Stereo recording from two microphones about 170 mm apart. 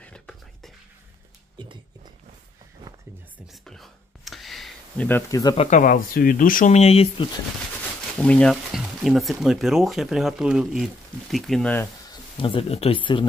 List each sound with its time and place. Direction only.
0.0 s a sound: 5° left (ahead or behind)
3.6 s a sound: centre (ahead or behind)
5.0 s speech: 15° left (ahead or behind)
5.6 s speech: 45° left (ahead or behind)
8.2 s speech: 5° left (ahead or behind)
12.1 s speech: 30° left (ahead or behind)